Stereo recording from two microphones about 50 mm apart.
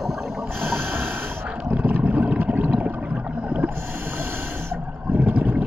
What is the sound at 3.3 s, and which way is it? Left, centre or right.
Boat, right.